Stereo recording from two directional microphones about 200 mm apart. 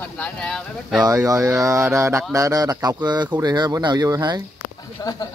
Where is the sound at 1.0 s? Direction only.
15° right (ahead or behind).